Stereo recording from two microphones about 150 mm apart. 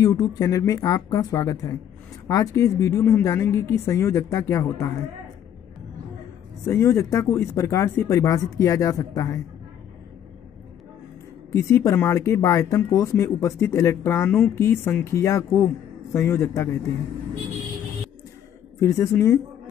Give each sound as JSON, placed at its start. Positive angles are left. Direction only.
{"t": 0.0, "sound": "speech", "side_deg": 25}
{"t": 6.6, "sound": "speech", "side_deg": 20}
{"t": 11.5, "sound": "a man's voice", "side_deg": 20}
{"t": 18.8, "sound": "speech", "side_deg": 20}